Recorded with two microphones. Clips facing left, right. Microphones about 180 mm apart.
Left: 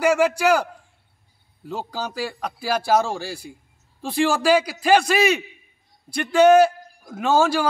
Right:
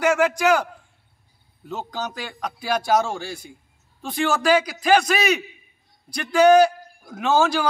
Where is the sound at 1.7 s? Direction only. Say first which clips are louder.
Left 1 dB; 10° left (ahead or behind).